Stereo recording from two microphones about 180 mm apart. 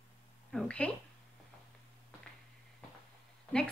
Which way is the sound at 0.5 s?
5° left (ahead or behind).